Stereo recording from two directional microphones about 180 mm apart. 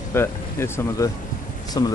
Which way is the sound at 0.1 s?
15° left (ahead or behind).